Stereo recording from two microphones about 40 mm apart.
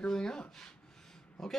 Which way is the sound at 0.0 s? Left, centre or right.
Centre.